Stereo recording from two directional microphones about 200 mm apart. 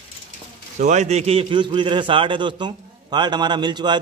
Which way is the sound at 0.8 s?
35° right (ahead or behind).